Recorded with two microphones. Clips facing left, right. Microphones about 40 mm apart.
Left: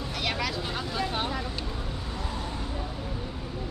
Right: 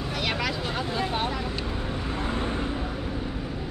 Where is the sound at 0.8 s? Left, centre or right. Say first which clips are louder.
Right 2 dB; right.